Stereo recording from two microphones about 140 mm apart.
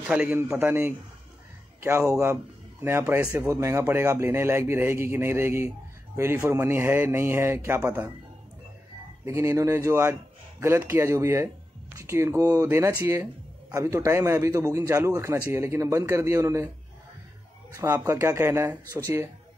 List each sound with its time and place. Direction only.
0.0 s a man's voice: 10° right (ahead or behind)
9.2 s a man's voice: 20° right (ahead or behind)
17.8 s a man's voice: 15° right (ahead or behind)